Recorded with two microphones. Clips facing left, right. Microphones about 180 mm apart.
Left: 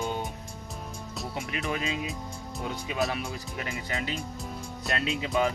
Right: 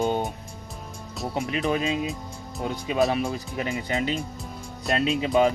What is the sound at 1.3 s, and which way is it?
Speech, 30° right (ahead or behind).